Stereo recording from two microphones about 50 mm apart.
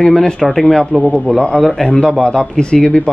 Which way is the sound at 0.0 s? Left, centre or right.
Centre.